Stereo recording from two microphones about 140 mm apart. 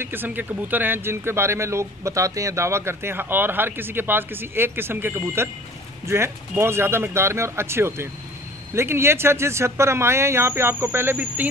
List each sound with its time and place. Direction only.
0.0 s speech: 15° right (ahead or behind)